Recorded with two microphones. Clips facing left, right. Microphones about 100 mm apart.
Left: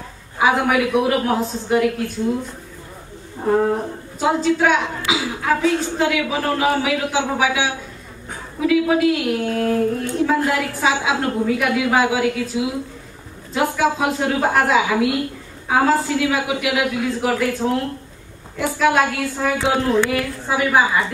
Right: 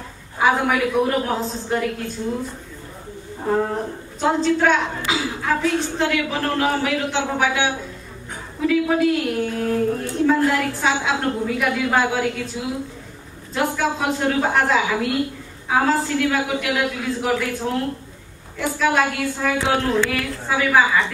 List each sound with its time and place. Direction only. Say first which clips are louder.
0.4 s a woman's voice: left 1 dB; 5° left (ahead or behind)
3.4 s a woman's voice: left 3 dB; 5° left (ahead or behind)
18.8 s a woman's voice: left 2 dB; 5° left (ahead or behind)
19.7 s a woman's voice: left 3 dB; 15° left (ahead or behind)